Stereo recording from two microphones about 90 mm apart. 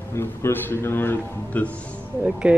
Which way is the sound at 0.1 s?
30° left (ahead or behind).